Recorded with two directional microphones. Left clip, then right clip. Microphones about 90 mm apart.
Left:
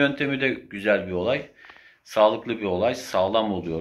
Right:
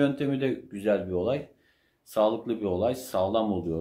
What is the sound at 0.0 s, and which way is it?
Speech, 20° right (ahead or behind).